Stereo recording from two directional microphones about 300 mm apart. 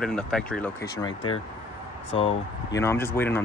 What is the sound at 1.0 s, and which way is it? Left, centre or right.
Speech, centre.